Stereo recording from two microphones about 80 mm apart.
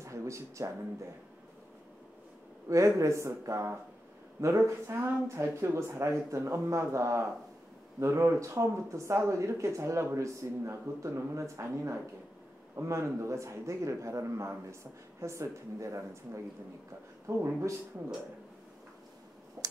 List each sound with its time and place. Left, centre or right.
0.0 s a sound: right
2.7 s speech: right
17.3 s speech: right
19.6 s finger snapping: right